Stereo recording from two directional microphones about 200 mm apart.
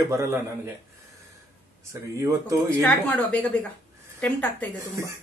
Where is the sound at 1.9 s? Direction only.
15° right (ahead or behind).